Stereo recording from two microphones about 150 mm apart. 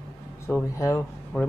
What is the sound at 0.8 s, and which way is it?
Speech, 20° left (ahead or behind).